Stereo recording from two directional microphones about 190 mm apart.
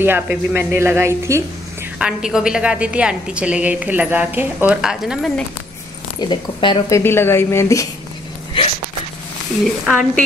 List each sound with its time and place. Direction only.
0.0 s a woman's voice: 10° right (ahead or behind)
6.2 s speech: 25° left (ahead or behind)
7.0 s a woman's voice: 10° left (ahead or behind)
9.8 s a woman's voice: centre (ahead or behind)